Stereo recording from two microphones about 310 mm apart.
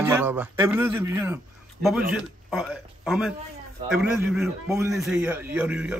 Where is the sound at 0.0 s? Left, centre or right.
Centre.